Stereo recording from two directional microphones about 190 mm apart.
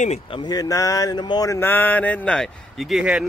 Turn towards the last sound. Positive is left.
turn(degrees=-5)  # may be behind; listen again after turning